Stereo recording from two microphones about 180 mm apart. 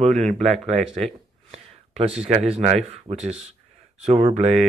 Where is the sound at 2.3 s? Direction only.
35° right (ahead or behind).